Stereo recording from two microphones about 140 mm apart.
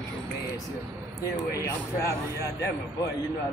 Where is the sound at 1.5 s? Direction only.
20° left (ahead or behind).